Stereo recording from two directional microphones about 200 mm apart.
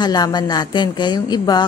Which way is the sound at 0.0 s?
20° left (ahead or behind).